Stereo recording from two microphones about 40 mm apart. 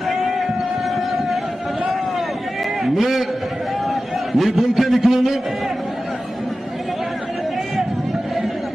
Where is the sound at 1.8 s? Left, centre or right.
Centre.